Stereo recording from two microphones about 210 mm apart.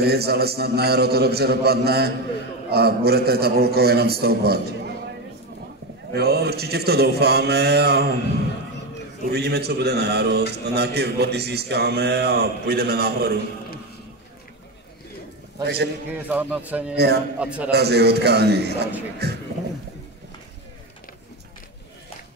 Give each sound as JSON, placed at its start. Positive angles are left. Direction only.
{"t": 0.0, "sound": "a man's voice", "side_deg": -50}
{"t": 6.1, "sound": "a man's voice", "side_deg": -50}
{"t": 9.3, "sound": "a man's voice", "side_deg": -50}
{"t": 15.6, "sound": "a man's voice", "side_deg": -50}
{"t": 16.1, "sound": "a man's voice", "side_deg": -10}
{"t": 16.9, "sound": "a man's voice", "side_deg": -50}
{"t": 17.4, "sound": "a man's voice", "side_deg": -5}
{"t": 17.6, "sound": "a man's voice", "side_deg": -50}